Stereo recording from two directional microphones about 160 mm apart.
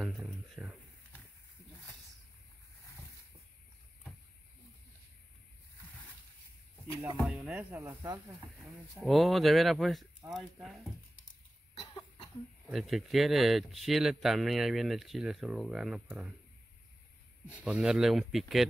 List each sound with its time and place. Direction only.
0.6 s a sound: 5° right (ahead or behind)
7.2 s speech: 5° right (ahead or behind)
7.7 s speech: 20° right (ahead or behind)
8.5 s speech: centre (ahead or behind)
12.6 s speech: centre (ahead or behind)
17.6 s speech: 5° right (ahead or behind)